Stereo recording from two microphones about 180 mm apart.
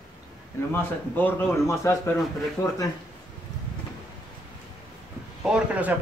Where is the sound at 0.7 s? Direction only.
10° left (ahead or behind).